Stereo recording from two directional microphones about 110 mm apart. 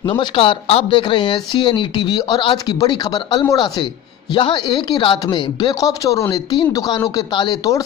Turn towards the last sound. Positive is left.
turn(degrees=35)  # may be behind; listen again after turning